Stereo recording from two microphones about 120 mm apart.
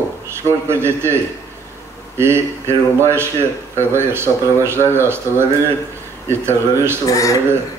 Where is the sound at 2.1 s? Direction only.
20° right (ahead or behind).